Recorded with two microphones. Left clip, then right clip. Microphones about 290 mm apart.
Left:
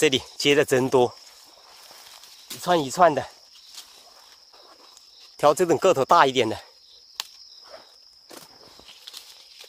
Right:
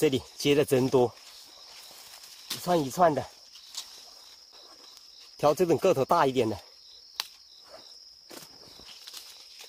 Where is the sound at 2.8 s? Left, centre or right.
Left.